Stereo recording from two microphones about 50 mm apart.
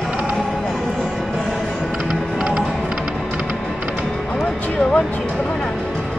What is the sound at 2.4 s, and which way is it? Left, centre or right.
Music, centre.